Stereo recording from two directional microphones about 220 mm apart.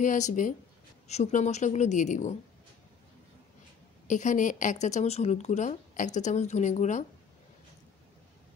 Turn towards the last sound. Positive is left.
turn(degrees=30)  # may be behind; listen again after turning